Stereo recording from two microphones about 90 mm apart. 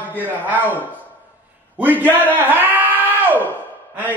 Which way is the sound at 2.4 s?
20° right (ahead or behind).